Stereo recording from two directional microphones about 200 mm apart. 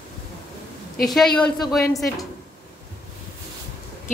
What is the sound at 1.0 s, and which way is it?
A woman's voice, centre (ahead or behind).